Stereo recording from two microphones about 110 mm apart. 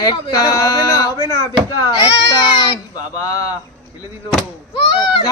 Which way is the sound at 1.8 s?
40° left (ahead or behind).